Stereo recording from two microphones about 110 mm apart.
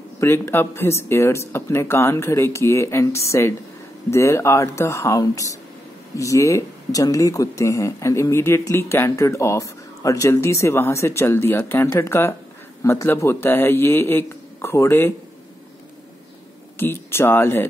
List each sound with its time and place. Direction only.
0.2 s speech: 25° left (ahead or behind)
16.7 s speech: 20° left (ahead or behind)